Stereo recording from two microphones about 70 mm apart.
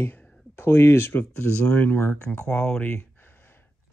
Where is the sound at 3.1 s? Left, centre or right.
Left.